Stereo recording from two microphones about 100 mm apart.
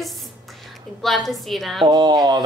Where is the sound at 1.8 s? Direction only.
40° right (ahead or behind).